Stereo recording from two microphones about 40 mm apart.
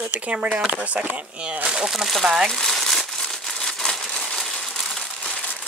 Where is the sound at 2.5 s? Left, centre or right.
Centre.